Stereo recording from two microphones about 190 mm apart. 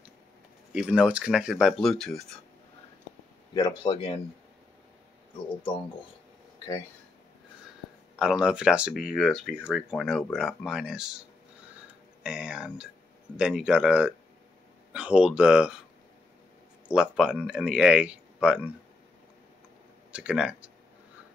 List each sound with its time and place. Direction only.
0.7 s speech: 5° right (ahead or behind)
3.5 s speech: 25° left (ahead or behind)
8.2 s speech: 5° right (ahead or behind)
16.8 s speech: 5° right (ahead or behind)
20.1 s speech: 5° right (ahead or behind)